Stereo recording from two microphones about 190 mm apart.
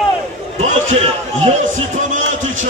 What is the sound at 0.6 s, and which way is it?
A man's voice, 40° right (ahead or behind).